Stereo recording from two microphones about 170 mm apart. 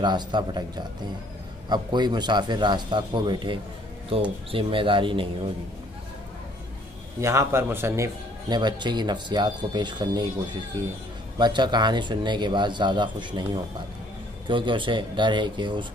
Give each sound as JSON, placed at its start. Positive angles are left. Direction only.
{"t": 0.0, "sound": "a man's voice", "side_deg": -25}
{"t": 7.2, "sound": "a man's voice", "side_deg": -15}
{"t": 14.5, "sound": "a man's voice", "side_deg": -30}